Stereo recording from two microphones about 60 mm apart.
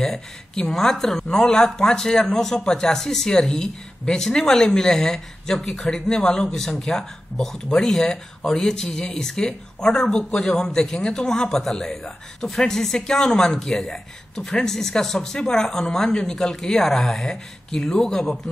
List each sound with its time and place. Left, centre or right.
0.0 s speech: centre